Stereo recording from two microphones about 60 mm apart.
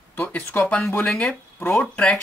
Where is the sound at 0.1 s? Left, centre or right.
Left.